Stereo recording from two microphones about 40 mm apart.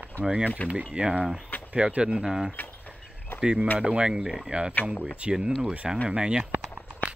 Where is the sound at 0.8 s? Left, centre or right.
Centre.